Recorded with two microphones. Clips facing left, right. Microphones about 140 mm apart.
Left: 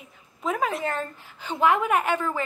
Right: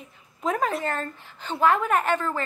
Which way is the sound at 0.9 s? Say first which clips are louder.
Even; 10° left (ahead or behind).